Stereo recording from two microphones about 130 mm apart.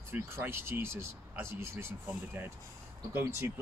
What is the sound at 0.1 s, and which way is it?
Speech, 15° right (ahead or behind).